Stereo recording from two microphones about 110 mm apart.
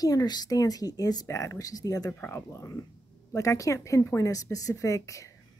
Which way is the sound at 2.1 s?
20° left (ahead or behind).